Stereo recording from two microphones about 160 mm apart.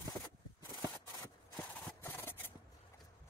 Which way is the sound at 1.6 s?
10° left (ahead or behind).